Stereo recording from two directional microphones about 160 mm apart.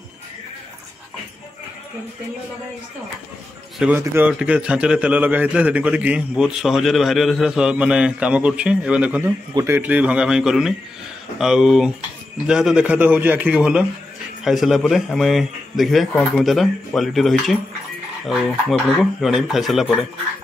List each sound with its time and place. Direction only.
4.0 s a man's voice: 10° right (ahead or behind)
9.5 s a man's voice: 25° right (ahead or behind)
9.8 s a man's voice: 10° right (ahead or behind)